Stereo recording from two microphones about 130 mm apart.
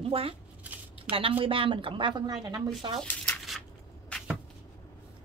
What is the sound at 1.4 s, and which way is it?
Speech, 45° right (ahead or behind).